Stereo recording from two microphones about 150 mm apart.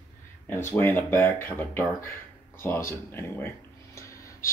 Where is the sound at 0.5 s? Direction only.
15° left (ahead or behind).